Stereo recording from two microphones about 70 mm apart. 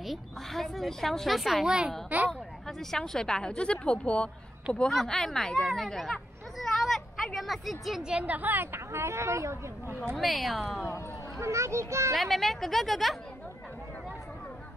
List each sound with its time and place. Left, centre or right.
0.0 s a woman's voice: centre
2.0 s speech: right
2.9 s a woman's voice: centre
6.6 s a sound: centre
7.3 s a woman's voice: centre
8.0 s speech: centre; by 9.9 s right
10.1 s a woman's voice: centre
11.3 s a child's voice: right
12.1 s a woman's voice: centre